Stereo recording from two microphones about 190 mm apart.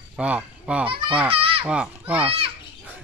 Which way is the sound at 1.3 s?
30° right (ahead or behind).